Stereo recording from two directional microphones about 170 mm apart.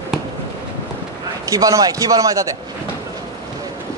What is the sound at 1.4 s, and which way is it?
A man's voice, 20° right (ahead or behind).